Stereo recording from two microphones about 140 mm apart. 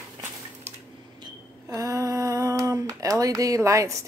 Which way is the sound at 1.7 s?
25° right (ahead or behind).